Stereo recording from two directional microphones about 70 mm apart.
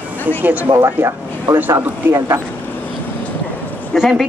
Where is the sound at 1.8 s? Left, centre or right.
Right.